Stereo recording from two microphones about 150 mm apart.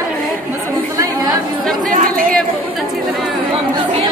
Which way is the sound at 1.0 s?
25° right (ahead or behind).